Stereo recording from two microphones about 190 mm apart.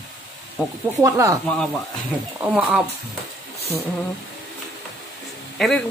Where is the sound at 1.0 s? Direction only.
15° right (ahead or behind).